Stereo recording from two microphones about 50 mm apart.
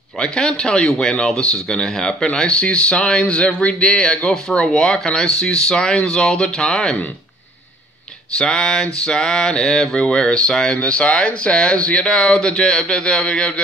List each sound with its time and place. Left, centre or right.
0.2 s speech: centre
2.3 s speech: centre
8.4 s speech: centre